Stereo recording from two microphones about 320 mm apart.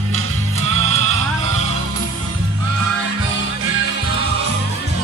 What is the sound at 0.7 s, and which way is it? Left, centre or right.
Music, left.